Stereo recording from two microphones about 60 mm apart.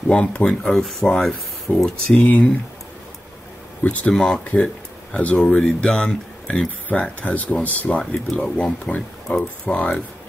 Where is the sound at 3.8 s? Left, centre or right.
Left.